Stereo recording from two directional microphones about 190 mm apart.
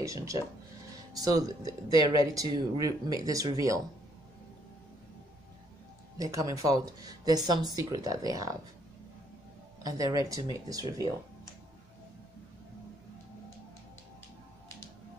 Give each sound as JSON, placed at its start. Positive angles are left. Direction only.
{"t": 0.0, "sound": "speech", "side_deg": -15}
{"t": 6.1, "sound": "speech", "side_deg": -20}
{"t": 9.8, "sound": "speech", "side_deg": -20}